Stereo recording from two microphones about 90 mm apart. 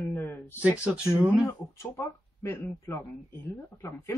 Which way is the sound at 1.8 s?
30° left (ahead or behind).